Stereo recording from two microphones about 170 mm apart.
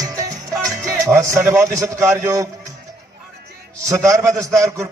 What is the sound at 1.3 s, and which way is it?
A man's voice, 15° right (ahead or behind).